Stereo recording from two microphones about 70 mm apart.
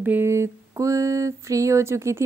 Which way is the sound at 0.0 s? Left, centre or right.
Right.